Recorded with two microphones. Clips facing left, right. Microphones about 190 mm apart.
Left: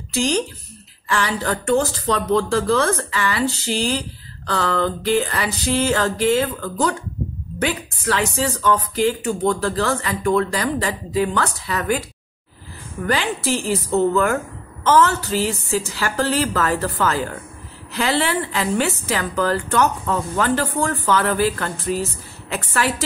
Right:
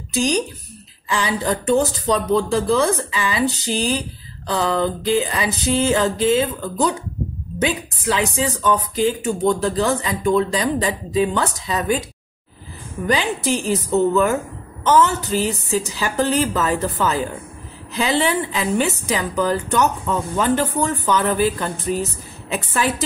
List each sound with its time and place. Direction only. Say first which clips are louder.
0.1 s speech: right 1 dB; 15° right (ahead or behind)
13.0 s a woman's voice: right 1 dB; 20° right (ahead or behind)